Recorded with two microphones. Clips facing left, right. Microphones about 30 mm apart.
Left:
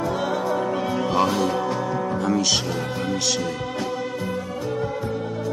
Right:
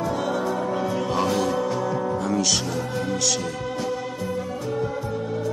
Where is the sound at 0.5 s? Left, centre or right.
Centre.